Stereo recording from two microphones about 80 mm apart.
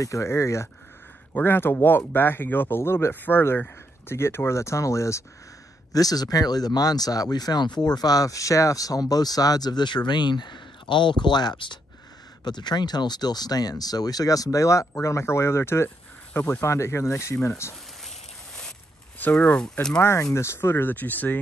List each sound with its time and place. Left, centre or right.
0.0 s speech: left
1.3 s speech: left
5.9 s speech: left
12.4 s speech: left
19.1 s speech: left
20.0 s speech: left